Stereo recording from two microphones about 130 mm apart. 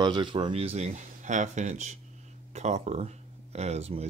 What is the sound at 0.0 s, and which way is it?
Speech, 35° right (ahead or behind).